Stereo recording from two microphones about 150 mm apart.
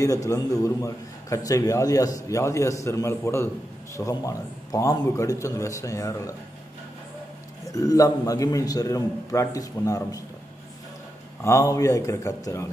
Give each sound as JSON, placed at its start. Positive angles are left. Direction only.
{"t": 0.0, "sound": "a man's voice", "side_deg": 20}
{"t": 7.6, "sound": "a man's voice", "side_deg": 25}
{"t": 11.4, "sound": "a man's voice", "side_deg": 20}